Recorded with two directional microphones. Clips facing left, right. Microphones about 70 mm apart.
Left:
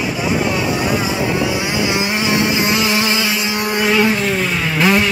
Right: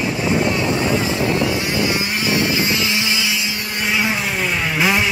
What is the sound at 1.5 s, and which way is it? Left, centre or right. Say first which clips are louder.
Motorboat: left 2 dB; centre.